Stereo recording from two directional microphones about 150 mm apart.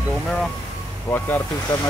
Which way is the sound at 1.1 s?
15° left (ahead or behind).